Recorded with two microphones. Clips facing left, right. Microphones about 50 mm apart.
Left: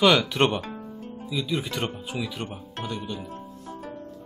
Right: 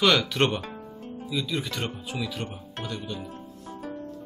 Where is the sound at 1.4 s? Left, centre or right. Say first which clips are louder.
Left 4 dB; centre.